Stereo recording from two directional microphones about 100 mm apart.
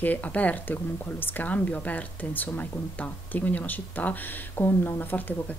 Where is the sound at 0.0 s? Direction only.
15° left (ahead or behind).